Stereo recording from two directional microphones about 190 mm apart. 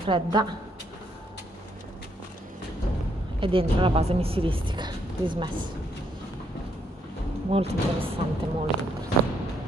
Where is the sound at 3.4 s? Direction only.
30° right (ahead or behind).